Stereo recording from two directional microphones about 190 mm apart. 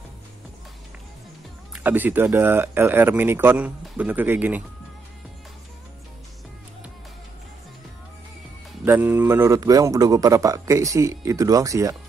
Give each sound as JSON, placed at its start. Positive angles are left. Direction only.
{"t": 1.7, "sound": "a man's voice", "side_deg": -10}
{"t": 8.8, "sound": "a man's voice", "side_deg": -10}